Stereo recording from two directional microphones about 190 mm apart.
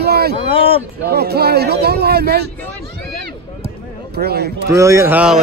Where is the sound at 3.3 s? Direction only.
55° right (ahead or behind).